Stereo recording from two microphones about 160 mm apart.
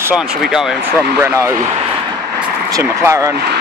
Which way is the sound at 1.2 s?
20° right (ahead or behind).